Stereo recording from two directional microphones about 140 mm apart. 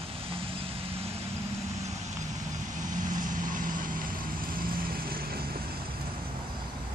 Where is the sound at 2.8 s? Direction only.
70° right (ahead or behind); by 5.6 s 90° right.